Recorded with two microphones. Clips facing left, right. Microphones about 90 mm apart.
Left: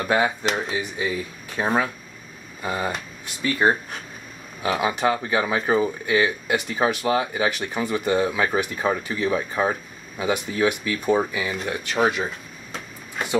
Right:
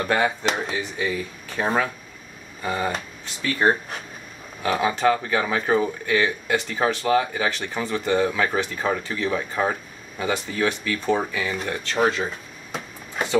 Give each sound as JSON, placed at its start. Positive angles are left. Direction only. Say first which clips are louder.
{"t": 0.0, "sound": "speech", "louder": "even", "side_deg": 10}
{"t": 0.7, "sound": "speech", "louder": "even", "side_deg": 15}